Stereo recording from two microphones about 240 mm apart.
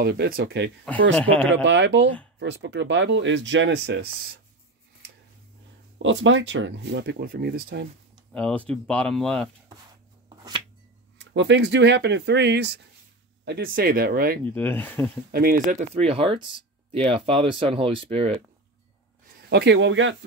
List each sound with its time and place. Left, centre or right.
0.0 s speech: right
0.9 s speech: centre
1.5 s speech: right
6.0 s speech: right
8.3 s speech: centre
11.1 s speech: right
14.4 s speech: centre
15.3 s speech: right
19.5 s speech: right